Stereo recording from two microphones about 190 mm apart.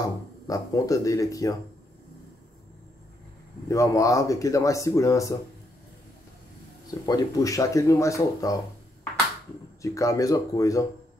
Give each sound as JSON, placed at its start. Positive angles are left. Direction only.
{"t": 0.0, "sound": "speech", "side_deg": 15}
{"t": 3.6, "sound": "speech", "side_deg": 15}
{"t": 6.9, "sound": "speech", "side_deg": 20}
{"t": 9.8, "sound": "speech", "side_deg": 15}